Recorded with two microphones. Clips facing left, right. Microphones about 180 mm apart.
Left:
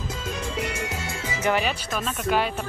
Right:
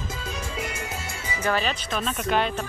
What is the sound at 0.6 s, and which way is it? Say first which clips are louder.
Music: left 3 dB; 70° left (ahead or behind).